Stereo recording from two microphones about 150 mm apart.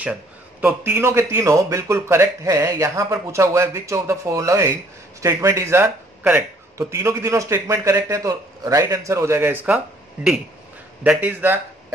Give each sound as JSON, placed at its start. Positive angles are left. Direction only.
{"t": 0.0, "sound": "speech", "side_deg": -10}
{"t": 11.1, "sound": "a man's voice", "side_deg": -10}